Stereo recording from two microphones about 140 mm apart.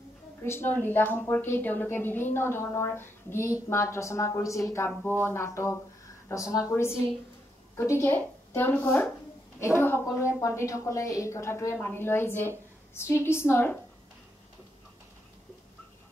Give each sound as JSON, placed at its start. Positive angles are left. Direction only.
{"t": 0.4, "sound": "a woman's voice", "side_deg": 15}